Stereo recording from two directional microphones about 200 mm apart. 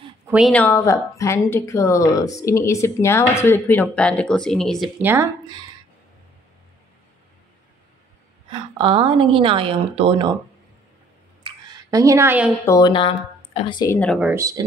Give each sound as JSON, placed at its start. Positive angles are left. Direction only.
{"t": 0.5, "sound": "speech", "side_deg": 10}
{"t": 5.0, "sound": "speech", "side_deg": -10}
{"t": 8.5, "sound": "a woman's voice", "side_deg": -25}
{"t": 11.4, "sound": "a sound", "side_deg": -20}
{"t": 12.6, "sound": "speech", "side_deg": 20}
{"t": 13.9, "sound": "speech", "side_deg": 5}
{"t": 14.2, "sound": "speech", "side_deg": -15}